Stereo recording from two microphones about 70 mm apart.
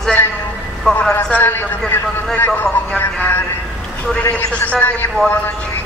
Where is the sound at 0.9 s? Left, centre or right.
Centre.